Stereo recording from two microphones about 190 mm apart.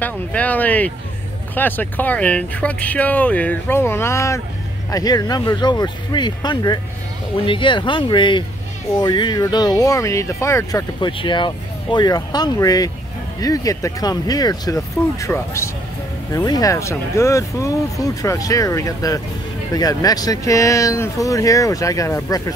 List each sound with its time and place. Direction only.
0.0 s speech: 10° left (ahead or behind)